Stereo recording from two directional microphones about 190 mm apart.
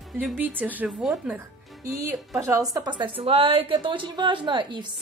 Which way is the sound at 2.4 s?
15° right (ahead or behind).